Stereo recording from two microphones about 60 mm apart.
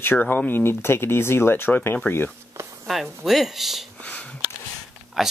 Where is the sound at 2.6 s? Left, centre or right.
Right.